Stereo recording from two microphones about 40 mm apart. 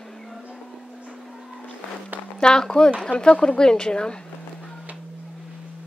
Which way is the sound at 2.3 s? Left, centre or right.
Left.